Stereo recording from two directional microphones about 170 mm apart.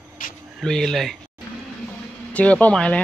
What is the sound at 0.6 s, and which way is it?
Speech, 5° left (ahead or behind).